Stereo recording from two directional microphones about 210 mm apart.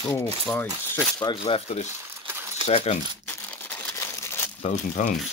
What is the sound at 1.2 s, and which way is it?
Speech, 25° left (ahead or behind).